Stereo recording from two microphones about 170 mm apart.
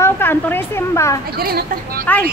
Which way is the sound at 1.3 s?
65° right (ahead or behind).